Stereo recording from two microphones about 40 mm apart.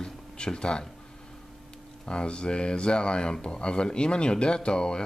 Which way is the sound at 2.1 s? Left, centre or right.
Left.